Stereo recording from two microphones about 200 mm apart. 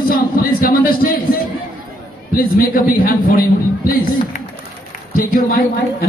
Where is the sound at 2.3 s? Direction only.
45° left (ahead or behind).